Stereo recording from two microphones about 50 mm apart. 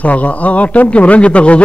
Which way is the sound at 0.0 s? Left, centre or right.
Left.